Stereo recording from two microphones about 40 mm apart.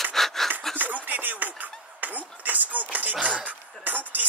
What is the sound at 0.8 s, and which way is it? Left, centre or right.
Music, right.